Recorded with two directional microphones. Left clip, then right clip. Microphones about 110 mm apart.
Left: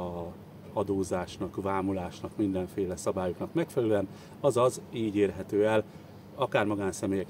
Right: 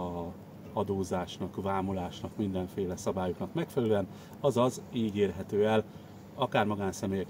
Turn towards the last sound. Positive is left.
turn(degrees=40)  # may be behind; listen again after turning